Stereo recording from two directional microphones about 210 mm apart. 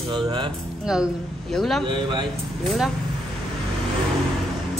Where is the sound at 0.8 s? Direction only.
5° right (ahead or behind).